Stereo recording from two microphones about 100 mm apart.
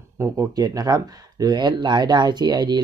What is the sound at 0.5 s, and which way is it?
Speech, 40° right (ahead or behind).